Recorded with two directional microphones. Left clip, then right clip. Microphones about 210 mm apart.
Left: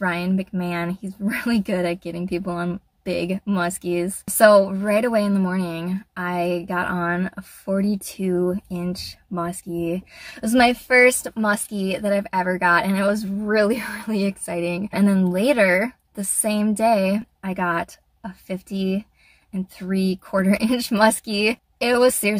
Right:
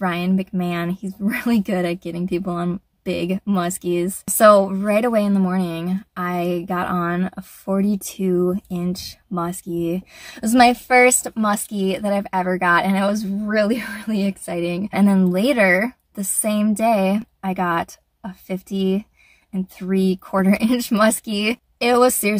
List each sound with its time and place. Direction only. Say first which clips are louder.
0.0 s a woman's voice: right 1 dB; 20° right (ahead or behind)
19.5 s a woman's voice: right 4 dB; 15° right (ahead or behind)